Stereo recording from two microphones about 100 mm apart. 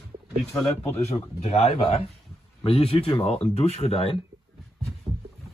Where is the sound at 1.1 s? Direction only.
90° left; by 4.2 s 70° left (ahead or behind).